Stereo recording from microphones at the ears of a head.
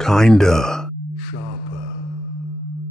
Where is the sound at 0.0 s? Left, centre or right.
Centre.